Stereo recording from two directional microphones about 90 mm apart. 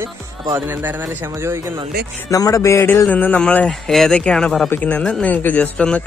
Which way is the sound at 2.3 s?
40° left (ahead or behind).